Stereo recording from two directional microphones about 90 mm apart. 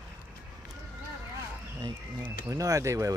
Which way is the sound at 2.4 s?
40° right (ahead or behind).